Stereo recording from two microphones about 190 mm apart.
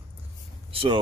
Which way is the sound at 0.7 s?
30° right (ahead or behind).